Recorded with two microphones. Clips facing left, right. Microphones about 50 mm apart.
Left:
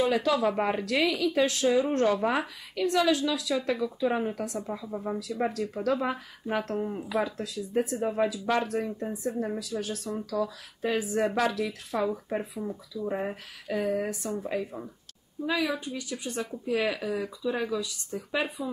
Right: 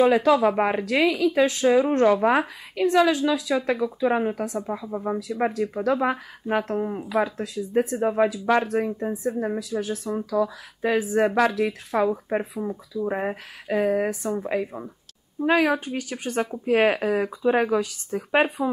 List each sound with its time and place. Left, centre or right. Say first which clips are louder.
0.1 s speech: right 7 dB; right
10.1 s speech: right 7 dB; right
15.4 s speech: right 8 dB; right